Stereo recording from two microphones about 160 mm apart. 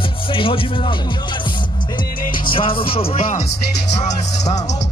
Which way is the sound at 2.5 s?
35° left (ahead or behind).